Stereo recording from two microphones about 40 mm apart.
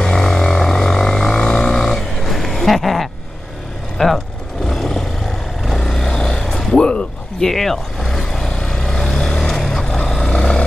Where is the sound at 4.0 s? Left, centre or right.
Centre.